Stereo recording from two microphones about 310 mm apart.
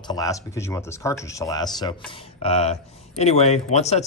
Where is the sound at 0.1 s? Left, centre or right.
Centre.